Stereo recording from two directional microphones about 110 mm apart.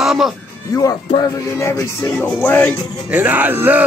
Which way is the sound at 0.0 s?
5° right (ahead or behind).